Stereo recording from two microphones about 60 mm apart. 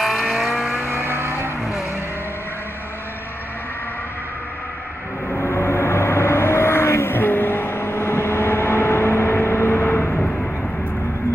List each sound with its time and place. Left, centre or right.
0.0 s vehicle: centre
0.8 s vehicle: right
1.6 s vehicle: centre
5.3 s vehicle: left